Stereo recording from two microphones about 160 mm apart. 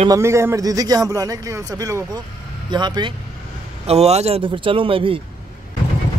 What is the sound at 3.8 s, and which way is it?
A man's voice, 40° right (ahead or behind).